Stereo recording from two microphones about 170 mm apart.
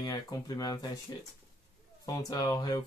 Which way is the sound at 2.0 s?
20° left (ahead or behind).